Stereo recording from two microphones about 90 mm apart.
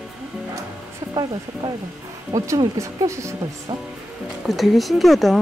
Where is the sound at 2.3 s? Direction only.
35° right (ahead or behind).